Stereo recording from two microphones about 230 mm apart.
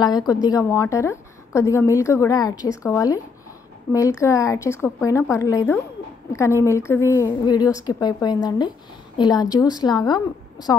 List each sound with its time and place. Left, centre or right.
0.0 s a woman's voice: centre